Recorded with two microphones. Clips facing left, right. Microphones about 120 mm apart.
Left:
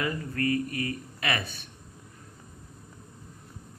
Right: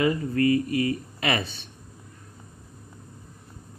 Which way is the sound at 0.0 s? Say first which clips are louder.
Right 7 dB; 20° right (ahead or behind).